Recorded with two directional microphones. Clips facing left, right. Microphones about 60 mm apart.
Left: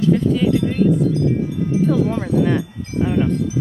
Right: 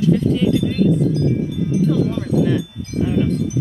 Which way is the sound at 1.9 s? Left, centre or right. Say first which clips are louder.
Left 1 dB; left.